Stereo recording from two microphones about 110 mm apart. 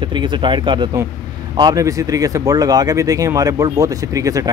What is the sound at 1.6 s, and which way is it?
Speech, 35° right (ahead or behind).